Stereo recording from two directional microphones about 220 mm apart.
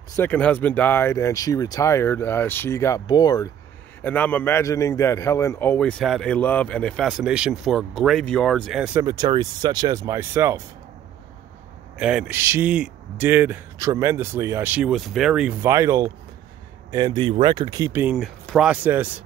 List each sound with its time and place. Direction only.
0.1 s a man's voice: 10° left (ahead or behind)
9.0 s a man's voice: 20° right (ahead or behind)
12.0 s a man's voice: 5° right (ahead or behind)
18.1 s a man's voice: centre (ahead or behind)